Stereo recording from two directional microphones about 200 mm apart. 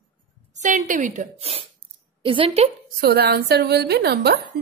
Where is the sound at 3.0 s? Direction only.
50° right (ahead or behind).